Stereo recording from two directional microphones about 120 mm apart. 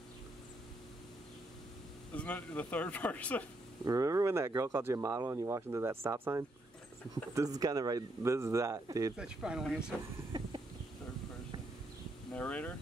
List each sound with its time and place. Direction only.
2.1 s speech: 15° left (ahead or behind)
3.8 s speech: 30° right (ahead or behind)
9.1 s speech: 5° right (ahead or behind)
12.3 s speech: 10° left (ahead or behind)